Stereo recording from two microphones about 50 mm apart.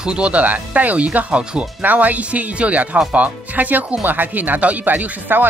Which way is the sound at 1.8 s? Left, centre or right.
Right.